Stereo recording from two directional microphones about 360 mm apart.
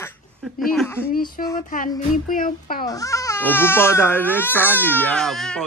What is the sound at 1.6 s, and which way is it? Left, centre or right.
Speech, left.